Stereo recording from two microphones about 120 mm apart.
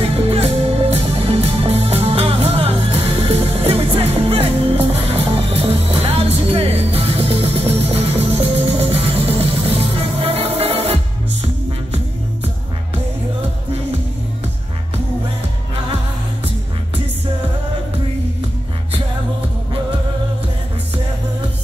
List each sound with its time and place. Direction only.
0.0 s music: 55° right (ahead or behind)